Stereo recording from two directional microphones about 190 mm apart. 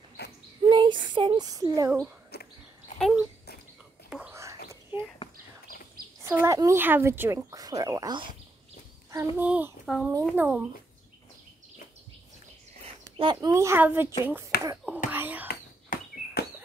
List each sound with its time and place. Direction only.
0.2 s a sound: 60° left (ahead or behind)
0.6 s child singing: 25° right (ahead or behind)
1.1 s speech: 25° right (ahead or behind)
1.9 s speech: 5° right (ahead or behind)
3.0 s a sound: centre (ahead or behind)
4.1 s whispering: 10° right (ahead or behind)
6.2 s speech: 15° right (ahead or behind)
13.2 s speech: 20° right (ahead or behind)
15.0 s whispering: 10° right (ahead or behind)
15.4 s a sound: 55° left (ahead or behind)